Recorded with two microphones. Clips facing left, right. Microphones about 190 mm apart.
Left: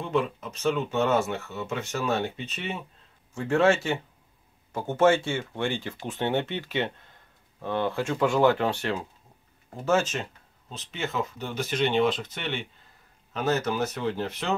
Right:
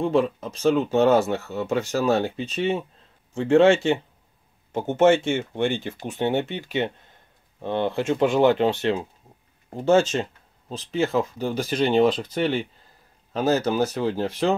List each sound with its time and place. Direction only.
0.0 s speech: 30° right (ahead or behind)